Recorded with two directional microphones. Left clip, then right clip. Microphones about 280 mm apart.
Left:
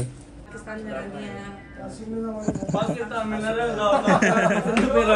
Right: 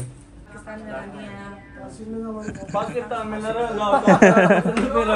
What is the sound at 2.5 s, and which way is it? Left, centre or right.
Speech, centre.